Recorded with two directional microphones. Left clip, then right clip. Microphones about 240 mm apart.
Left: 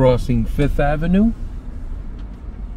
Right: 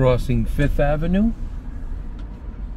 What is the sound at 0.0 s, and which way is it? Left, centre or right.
Speech, centre.